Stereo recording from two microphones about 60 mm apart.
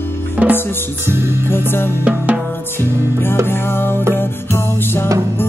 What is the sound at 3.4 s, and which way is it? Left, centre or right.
Music, left.